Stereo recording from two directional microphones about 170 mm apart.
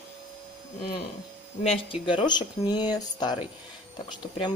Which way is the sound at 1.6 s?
35° left (ahead or behind).